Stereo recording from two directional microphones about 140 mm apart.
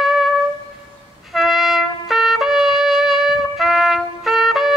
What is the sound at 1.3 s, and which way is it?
Trumpet, centre (ahead or behind).